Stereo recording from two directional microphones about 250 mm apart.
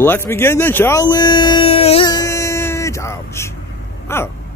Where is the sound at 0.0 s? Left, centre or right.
Centre.